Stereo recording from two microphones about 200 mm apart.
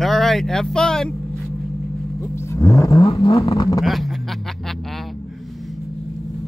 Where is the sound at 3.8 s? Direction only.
Centre (ahead or behind).